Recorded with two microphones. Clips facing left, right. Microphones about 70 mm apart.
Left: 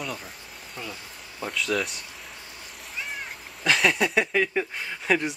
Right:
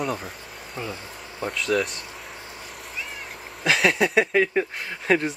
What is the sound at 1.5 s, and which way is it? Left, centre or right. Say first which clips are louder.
Speech: right 3 dB; centre.